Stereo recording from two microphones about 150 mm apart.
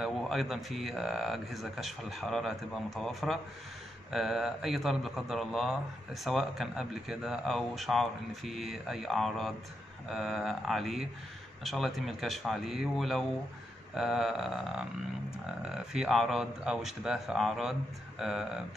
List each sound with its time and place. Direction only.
0.0 s a man's voice: centre (ahead or behind)